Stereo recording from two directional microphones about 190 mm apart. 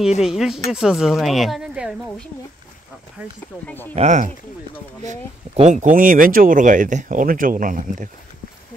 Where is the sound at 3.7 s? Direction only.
10° left (ahead or behind).